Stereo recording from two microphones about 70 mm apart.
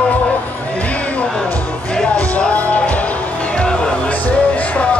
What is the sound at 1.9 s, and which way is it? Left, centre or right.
Music, centre.